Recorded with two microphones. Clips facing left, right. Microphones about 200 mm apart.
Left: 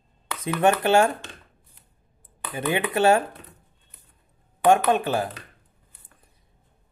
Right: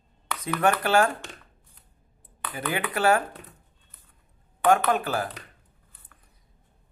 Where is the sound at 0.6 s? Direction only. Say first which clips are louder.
Left 3 dB; 25° left (ahead or behind).